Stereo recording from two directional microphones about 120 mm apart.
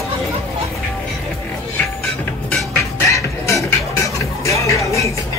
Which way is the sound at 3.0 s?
25° left (ahead or behind).